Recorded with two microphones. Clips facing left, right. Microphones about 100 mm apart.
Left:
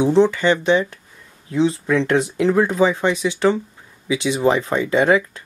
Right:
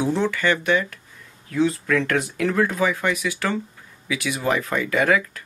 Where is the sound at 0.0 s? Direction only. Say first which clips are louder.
Left 7 dB; 25° left (ahead or behind).